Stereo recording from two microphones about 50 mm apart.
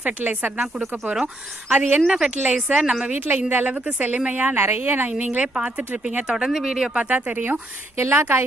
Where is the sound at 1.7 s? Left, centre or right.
Right.